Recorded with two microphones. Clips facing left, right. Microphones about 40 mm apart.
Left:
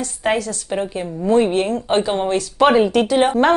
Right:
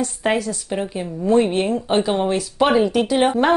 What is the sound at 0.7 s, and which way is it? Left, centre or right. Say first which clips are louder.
Speech: left 2 dB; centre.